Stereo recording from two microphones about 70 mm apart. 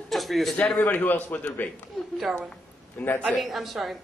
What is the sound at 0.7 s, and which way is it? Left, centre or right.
Speech, left.